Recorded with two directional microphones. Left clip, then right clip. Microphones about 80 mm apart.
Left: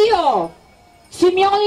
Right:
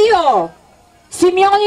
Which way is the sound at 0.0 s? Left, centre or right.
Right.